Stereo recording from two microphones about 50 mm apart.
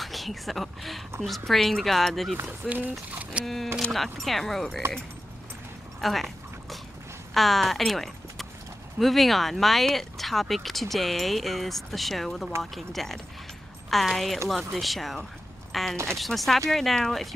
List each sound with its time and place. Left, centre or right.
0.0 s speech: centre
2.7 s speech: right
3.4 s speech: centre
5.9 s a sound: centre
7.3 s speech: centre